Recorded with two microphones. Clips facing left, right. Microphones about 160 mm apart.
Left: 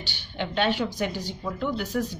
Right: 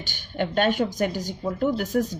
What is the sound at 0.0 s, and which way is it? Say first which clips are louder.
A woman's voice: right 5 dB; 45° right (ahead or behind).